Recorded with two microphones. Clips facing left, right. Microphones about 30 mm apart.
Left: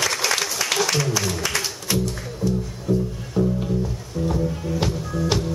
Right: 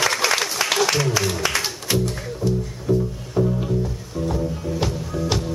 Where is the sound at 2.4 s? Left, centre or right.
Left.